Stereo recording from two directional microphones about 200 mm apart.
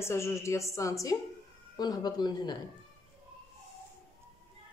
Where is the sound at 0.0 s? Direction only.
15° left (ahead or behind).